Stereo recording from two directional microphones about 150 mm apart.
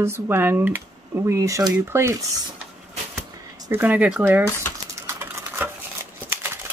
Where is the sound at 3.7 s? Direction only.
10° right (ahead or behind).